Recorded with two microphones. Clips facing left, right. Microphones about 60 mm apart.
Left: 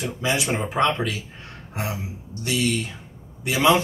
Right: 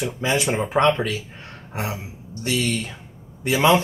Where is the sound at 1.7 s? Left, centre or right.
Right.